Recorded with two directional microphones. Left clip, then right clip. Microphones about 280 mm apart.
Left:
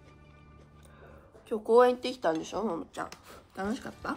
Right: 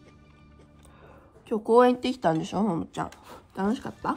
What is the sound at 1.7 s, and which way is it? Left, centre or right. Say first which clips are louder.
Speech: right 3 dB; right.